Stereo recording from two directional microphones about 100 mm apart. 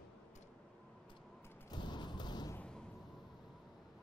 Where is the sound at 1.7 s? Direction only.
50° left (ahead or behind).